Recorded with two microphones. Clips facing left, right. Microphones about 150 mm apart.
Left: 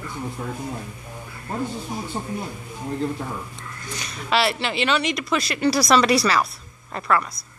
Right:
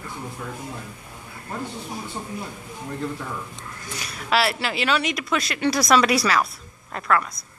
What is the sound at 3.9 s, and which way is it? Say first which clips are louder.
Speech: even; 5° right (ahead or behind).